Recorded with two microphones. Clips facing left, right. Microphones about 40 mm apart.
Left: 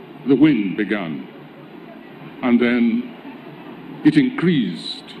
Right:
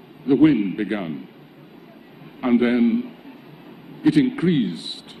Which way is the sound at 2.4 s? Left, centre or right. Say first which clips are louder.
Left 2 dB; left.